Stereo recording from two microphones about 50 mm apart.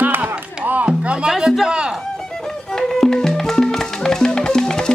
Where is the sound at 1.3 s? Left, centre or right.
Centre.